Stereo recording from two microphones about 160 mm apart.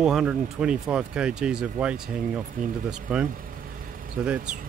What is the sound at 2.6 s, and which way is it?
Speech, 55° right (ahead or behind).